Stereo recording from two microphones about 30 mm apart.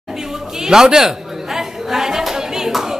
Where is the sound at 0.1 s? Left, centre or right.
Centre.